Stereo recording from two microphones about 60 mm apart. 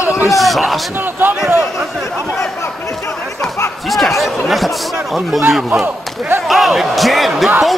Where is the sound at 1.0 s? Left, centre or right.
Right.